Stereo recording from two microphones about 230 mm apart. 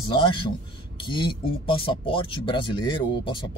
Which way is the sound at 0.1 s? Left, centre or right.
Left.